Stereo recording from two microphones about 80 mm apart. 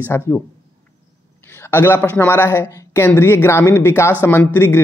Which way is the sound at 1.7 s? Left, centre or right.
Left.